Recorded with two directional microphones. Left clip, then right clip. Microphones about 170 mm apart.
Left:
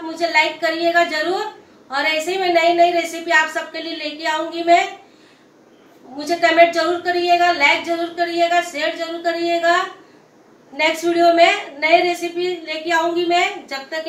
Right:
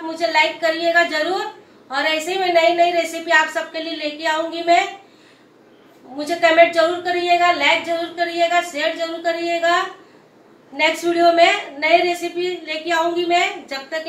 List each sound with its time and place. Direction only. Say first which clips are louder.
0.2 s a woman's voice: even; 10° left (ahead or behind)
6.1 s a woman's voice: even; 10° left (ahead or behind)
10.8 s a woman's voice: even; 10° left (ahead or behind)